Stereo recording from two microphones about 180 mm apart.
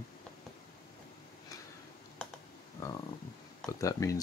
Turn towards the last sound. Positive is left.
turn(degrees=15)  # may be behind; listen again after turning